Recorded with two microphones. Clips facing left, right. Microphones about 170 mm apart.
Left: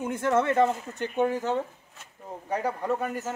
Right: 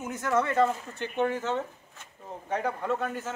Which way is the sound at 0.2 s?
25° left (ahead or behind).